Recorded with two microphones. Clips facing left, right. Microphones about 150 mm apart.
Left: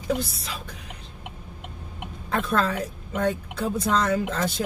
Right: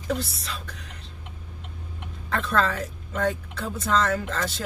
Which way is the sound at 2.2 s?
10° left (ahead or behind).